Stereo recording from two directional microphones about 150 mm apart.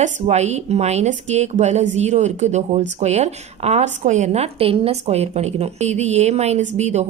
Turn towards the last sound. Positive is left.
turn(degrees=-50)  # may be behind; listen again after turning